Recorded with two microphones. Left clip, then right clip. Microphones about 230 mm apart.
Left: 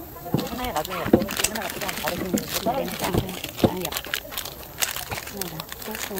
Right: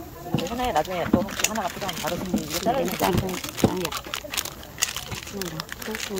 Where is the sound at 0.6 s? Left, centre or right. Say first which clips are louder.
Right 7 dB; right.